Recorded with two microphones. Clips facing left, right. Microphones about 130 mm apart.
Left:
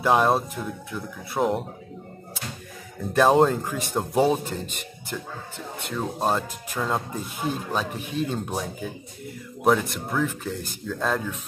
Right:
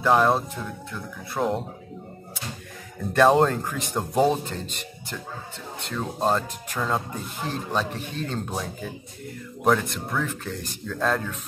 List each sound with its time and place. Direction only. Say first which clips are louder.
0.0 s speech: even; 15° left (ahead or behind)
3.1 s speech: even; 5° left (ahead or behind)